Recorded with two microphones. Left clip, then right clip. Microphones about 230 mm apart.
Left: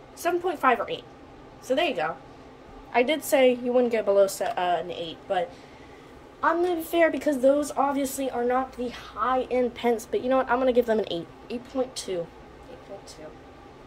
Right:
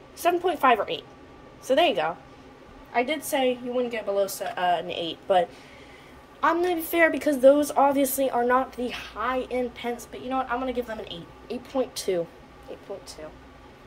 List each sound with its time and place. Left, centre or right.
0.2 s a woman's voice: centre
2.9 s a woman's voice: centre
6.4 s a woman's voice: centre
9.8 s a woman's voice: left
11.4 s speech: centre
11.9 s a woman's voice: centre